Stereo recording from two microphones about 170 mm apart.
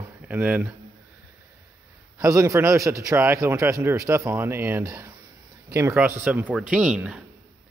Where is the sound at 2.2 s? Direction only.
20° right (ahead or behind).